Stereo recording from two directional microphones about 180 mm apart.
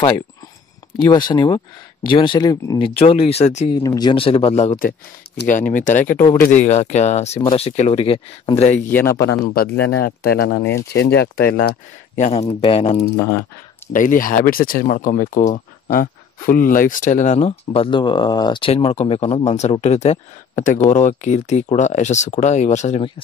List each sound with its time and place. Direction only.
1.0 s speech: 25° left (ahead or behind)
3.0 s speech: 35° left (ahead or behind)
3.7 s speech: 20° left (ahead or behind)
4.7 s speech: 60° left (ahead or behind)
5.5 s speech: 45° left (ahead or behind)
8.7 s speech: 10° left (ahead or behind)
9.2 s speech: 60° left (ahead or behind)
12.4 s speech: 30° left (ahead or behind)
13.0 s speech: 15° left (ahead or behind)
13.9 s speech: 50° left (ahead or behind); by 23.2 s 35° left (ahead or behind)